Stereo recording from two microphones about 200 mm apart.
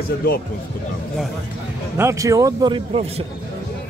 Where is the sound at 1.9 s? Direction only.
15° right (ahead or behind).